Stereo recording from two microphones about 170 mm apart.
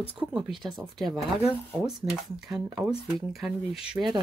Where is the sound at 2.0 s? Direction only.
30° right (ahead or behind).